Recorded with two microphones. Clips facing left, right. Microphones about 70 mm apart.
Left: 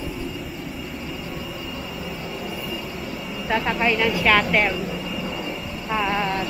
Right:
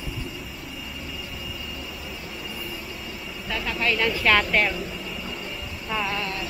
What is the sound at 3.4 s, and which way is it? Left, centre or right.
Speech, left.